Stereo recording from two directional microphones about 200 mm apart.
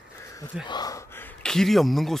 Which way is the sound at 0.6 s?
20° left (ahead or behind).